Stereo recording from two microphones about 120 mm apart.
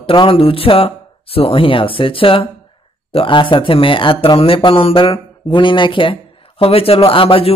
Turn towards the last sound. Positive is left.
turn(degrees=50)  # may be behind; listen again after turning